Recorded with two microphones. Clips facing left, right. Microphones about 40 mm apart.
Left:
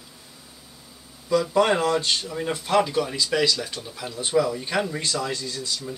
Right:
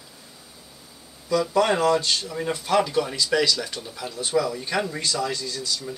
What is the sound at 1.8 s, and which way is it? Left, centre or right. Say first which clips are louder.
Speech: right 2 dB; left.